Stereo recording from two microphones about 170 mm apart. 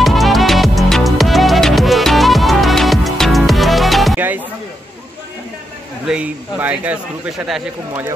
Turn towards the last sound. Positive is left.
turn(degrees=0)  # may be behind; listen again after turning